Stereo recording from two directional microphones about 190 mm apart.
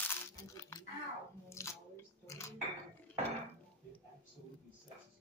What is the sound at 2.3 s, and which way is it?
Dishes, 15° left (ahead or behind).